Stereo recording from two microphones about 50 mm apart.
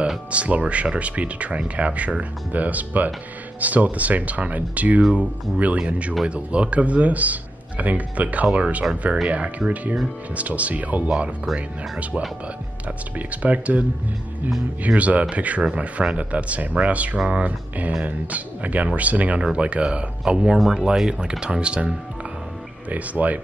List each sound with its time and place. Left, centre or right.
0.3 s speech: right
9.6 s speech: centre
10.3 s speech: right
14.9 s speech: right
20.5 s speech: centre; by 23.4 s right